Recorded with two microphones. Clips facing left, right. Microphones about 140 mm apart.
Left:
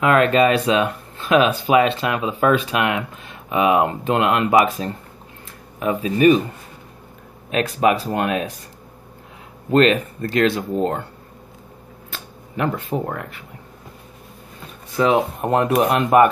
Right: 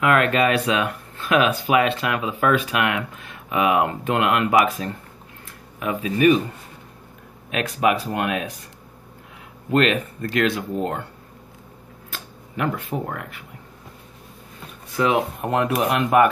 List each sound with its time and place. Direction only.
0.0 s speech: 25° left (ahead or behind)
7.5 s speech: 30° left (ahead or behind)
9.7 s speech: 30° left (ahead or behind)
12.5 s speech: 25° left (ahead or behind)
15.0 s speech: 30° left (ahead or behind)